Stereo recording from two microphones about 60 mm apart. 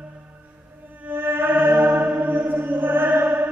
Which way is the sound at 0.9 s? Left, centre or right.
Right.